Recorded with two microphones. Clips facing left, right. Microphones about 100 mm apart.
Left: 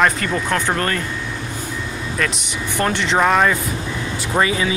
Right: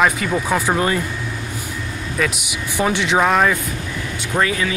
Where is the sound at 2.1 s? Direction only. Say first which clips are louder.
Right 2 dB; 5° right (ahead or behind).